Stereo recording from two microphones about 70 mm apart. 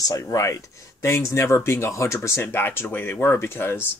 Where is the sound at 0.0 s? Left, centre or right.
Left.